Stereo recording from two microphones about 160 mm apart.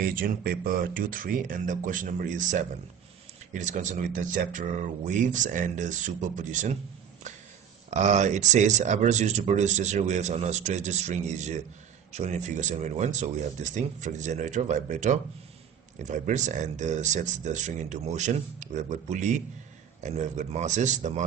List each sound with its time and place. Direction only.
0.0 s speech: 65° right (ahead or behind); by 6.8 s 50° right (ahead or behind)
7.2 s a sound: 50° right (ahead or behind)
7.9 s speech: 45° right (ahead or behind)